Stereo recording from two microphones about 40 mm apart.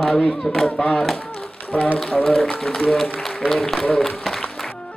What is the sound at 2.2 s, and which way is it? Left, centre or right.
A man's voice, centre.